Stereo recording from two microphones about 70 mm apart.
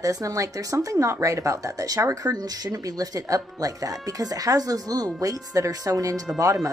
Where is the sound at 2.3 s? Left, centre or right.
Right.